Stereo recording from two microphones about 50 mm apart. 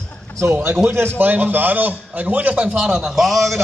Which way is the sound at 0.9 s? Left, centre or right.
Right.